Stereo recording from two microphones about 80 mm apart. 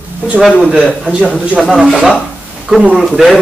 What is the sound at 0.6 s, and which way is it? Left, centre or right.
Speech, centre.